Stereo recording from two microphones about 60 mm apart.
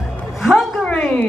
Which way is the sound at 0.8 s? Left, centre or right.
Centre.